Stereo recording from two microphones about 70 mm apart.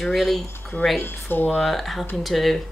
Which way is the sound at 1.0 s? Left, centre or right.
Left.